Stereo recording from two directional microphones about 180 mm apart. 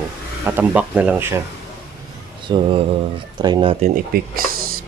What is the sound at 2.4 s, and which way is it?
Speech, 30° right (ahead or behind).